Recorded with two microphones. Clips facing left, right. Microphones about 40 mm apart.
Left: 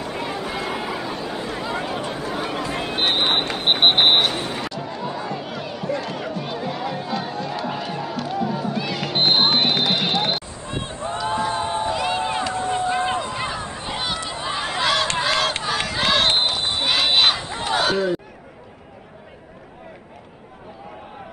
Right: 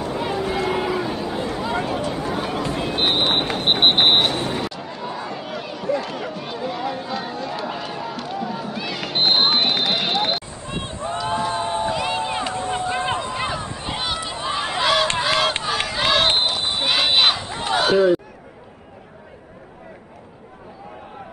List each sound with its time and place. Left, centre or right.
0.2 s a sound: centre
2.2 s run: centre
2.8 s a sound: centre
10.7 s run: right
11.4 s crowd: centre
12.4 s run: right
14.0 s run: centre
15.1 s a sound: centre
15.6 s run: centre